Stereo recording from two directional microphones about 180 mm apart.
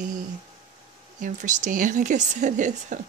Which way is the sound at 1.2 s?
45° right (ahead or behind).